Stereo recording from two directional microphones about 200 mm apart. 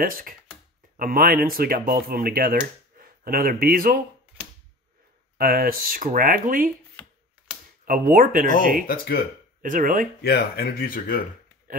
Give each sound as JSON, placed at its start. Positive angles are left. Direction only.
{"t": 0.0, "sound": "speech", "side_deg": -45}
{"t": 5.4, "sound": "speech", "side_deg": -45}
{"t": 7.8, "sound": "speech", "side_deg": -45}
{"t": 8.8, "sound": "speech", "side_deg": 50}
{"t": 9.6, "sound": "speech", "side_deg": -40}
{"t": 10.2, "sound": "speech", "side_deg": 55}